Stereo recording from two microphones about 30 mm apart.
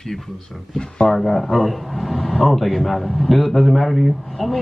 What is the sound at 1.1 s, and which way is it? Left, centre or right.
A man's voice, centre.